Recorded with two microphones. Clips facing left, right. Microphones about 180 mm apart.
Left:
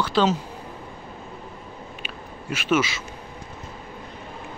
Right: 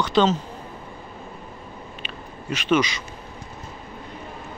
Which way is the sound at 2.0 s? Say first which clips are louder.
Right 2 dB; 5° left (ahead or behind).